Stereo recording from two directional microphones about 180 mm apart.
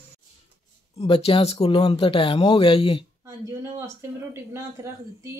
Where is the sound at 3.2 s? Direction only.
15° right (ahead or behind).